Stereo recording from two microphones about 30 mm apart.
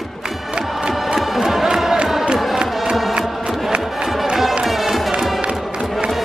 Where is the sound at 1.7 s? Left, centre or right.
Centre.